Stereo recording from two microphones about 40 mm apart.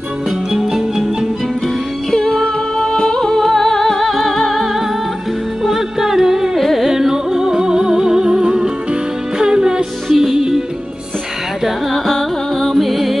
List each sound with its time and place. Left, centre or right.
0.5 s music: centre
2.0 s music: centre
6.9 s music: centre
10.1 s music: centre
11.9 s music: centre
12.7 s music: centre